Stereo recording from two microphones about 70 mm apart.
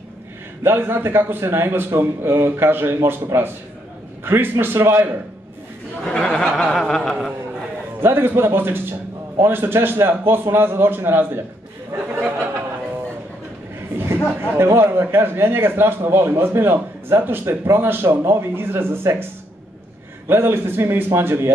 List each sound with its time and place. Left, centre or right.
0.7 s a man's voice: right
4.2 s a man's voice: right
6.0 s speech: centre
8.0 s a man's voice: right
13.9 s a man's voice: right
20.2 s a man's voice: right